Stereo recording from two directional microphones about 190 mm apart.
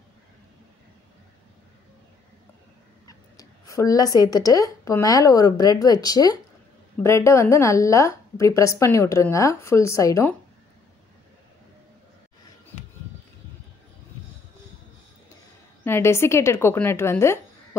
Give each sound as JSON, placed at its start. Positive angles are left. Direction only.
{"t": 3.1, "sound": "a woman's voice", "side_deg": 20}
{"t": 15.8, "sound": "a woman's voice", "side_deg": 15}